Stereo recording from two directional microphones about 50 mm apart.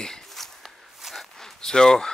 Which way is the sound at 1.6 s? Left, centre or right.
Centre.